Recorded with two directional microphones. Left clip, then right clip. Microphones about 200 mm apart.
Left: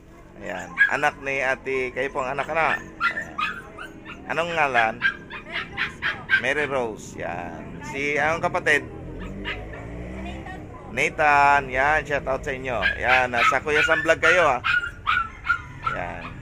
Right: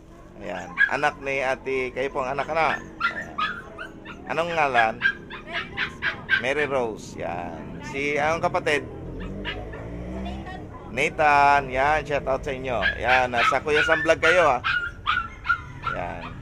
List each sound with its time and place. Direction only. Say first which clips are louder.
0.5 s speech: left 2 dB; 10° left (ahead or behind)
4.3 s speech: even; 5° left (ahead or behind)
5.0 s dog: even; 45° left (ahead or behind)
6.4 s speech: even; 5° left (ahead or behind)
11.0 s speech: even; 5° left (ahead or behind)
14.6 s dog: left 2 dB; 45° left (ahead or behind)